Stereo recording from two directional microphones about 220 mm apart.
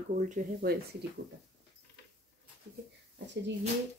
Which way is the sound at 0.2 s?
40° right (ahead or behind).